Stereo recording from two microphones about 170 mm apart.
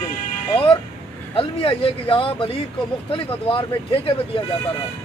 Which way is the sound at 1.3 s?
30° left (ahead or behind).